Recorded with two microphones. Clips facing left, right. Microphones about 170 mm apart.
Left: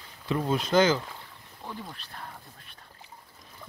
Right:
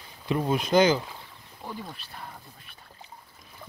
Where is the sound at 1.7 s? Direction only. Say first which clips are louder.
Right 2 dB; 10° right (ahead or behind).